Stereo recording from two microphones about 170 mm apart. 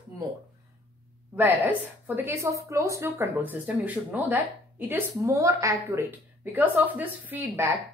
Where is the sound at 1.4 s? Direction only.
10° right (ahead or behind).